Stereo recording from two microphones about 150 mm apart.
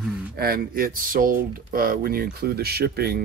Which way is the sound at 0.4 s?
85° right.